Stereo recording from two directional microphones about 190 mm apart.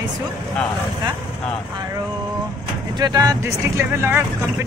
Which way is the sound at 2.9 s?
20° right (ahead or behind).